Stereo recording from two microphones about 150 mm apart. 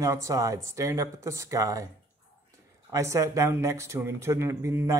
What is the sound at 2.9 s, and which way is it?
Speech, 20° right (ahead or behind).